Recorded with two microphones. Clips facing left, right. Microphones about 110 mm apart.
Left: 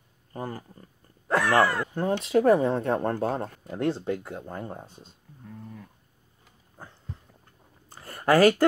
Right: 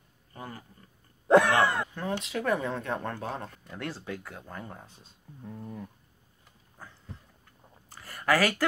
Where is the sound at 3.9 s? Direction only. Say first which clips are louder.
Left 10 dB; 25° left (ahead or behind).